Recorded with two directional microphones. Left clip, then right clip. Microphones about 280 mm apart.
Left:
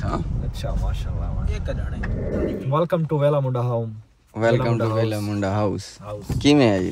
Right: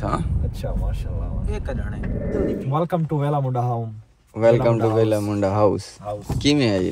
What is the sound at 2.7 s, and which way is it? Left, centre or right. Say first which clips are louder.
Speech: left 2 dB; centre.